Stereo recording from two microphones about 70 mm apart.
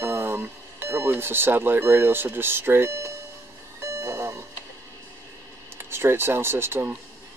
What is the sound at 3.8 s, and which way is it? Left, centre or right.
Music, right.